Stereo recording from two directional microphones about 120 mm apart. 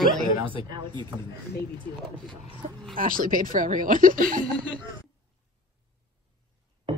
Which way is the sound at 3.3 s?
90° right.